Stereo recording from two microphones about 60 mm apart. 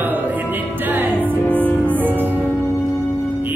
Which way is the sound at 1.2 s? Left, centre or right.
Left.